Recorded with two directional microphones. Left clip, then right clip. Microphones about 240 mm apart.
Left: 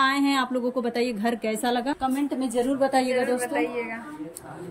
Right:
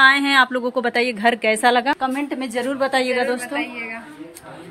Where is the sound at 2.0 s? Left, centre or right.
Right.